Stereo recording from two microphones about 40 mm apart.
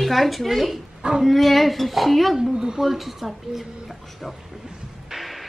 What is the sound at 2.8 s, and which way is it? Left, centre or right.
A woman's voice, centre.